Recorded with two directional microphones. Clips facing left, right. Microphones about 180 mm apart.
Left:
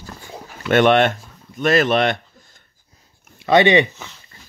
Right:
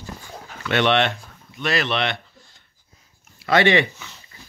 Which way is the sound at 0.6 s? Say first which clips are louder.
Left 5 dB; 45° left (ahead or behind).